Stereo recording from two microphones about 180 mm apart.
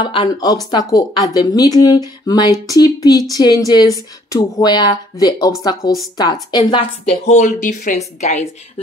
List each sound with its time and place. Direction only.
0.0 s a woman's voice: 30° left (ahead or behind)
7.1 s a woman's voice: 40° left (ahead or behind)